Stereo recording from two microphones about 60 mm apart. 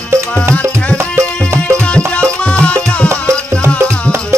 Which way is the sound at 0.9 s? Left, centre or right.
Right.